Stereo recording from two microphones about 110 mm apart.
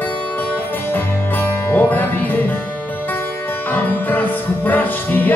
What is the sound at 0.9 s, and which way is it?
Music, 15° left (ahead or behind).